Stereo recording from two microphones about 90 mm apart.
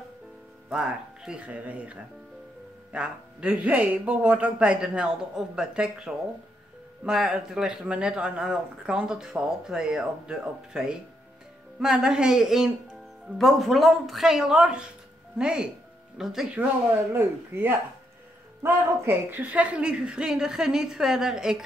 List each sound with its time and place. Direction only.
0.7 s speech: 10° right (ahead or behind)
17.1 s speech: 20° right (ahead or behind); by 21.6 s 5° right (ahead or behind)